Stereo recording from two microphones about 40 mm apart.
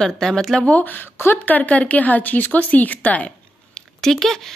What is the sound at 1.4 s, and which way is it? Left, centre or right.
Speech, left.